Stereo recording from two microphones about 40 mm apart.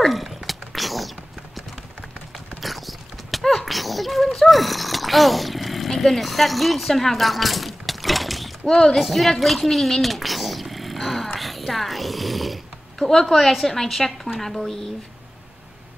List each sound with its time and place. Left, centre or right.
0.0 s dog: centre
2.6 s clip-clop: centre
8.6 s speech: centre
8.9 s a sound: centre
11.3 s a woman's voice: centre